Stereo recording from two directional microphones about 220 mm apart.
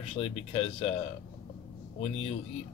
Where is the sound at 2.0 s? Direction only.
30° left (ahead or behind).